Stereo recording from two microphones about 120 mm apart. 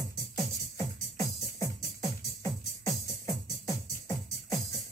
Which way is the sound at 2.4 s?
25° left (ahead or behind).